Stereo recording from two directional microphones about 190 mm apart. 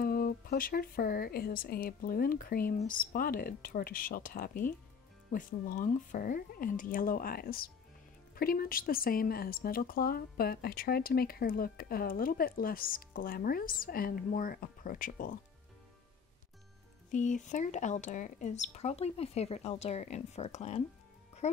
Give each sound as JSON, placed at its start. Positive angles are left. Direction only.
{"t": 0.0, "sound": "speech", "side_deg": 50}
{"t": 17.1, "sound": "speech", "side_deg": 40}